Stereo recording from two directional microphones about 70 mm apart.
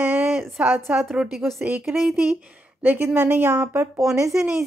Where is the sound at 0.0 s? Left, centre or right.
Right.